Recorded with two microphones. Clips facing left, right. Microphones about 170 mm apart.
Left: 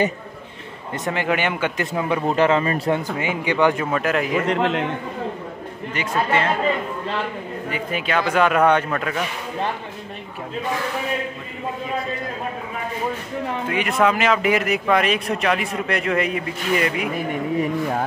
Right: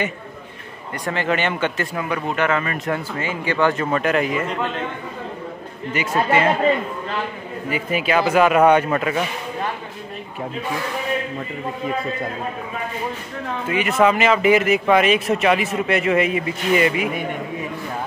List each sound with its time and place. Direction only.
1.1 s speech: 10° left (ahead or behind)
2.2 s speech: 30° left (ahead or behind)
3.0 s speech: 15° left (ahead or behind); by 4.3 s centre (ahead or behind)
4.3 s a man's voice: 70° left (ahead or behind)
5.9 s a man's voice: 10° right (ahead or behind)
7.7 s a man's voice: 5° right (ahead or behind)
13.7 s speech: centre (ahead or behind)